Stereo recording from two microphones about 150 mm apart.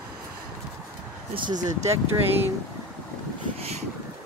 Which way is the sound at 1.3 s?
30° right (ahead or behind).